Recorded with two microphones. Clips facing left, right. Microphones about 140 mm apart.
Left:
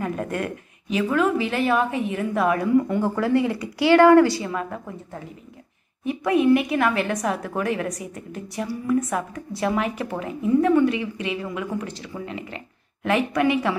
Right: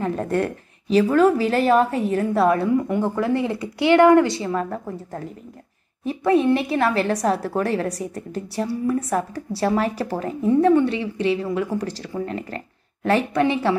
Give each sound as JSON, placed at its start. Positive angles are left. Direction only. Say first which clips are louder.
{"t": 0.0, "sound": "a woman's voice", "louder": "right 4 dB", "side_deg": -30}
{"t": 2.9, "sound": "a woman's voice", "louder": "even", "side_deg": -20}